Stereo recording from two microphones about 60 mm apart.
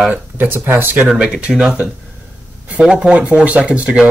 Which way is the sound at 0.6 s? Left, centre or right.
Right.